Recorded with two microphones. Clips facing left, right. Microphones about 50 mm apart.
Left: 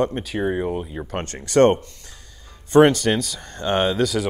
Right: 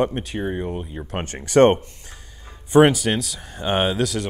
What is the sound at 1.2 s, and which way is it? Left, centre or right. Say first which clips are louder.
Speech: right 1 dB; right.